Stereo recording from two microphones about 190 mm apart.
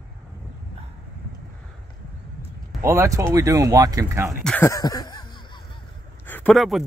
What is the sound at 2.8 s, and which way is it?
Speech, 15° right (ahead or behind).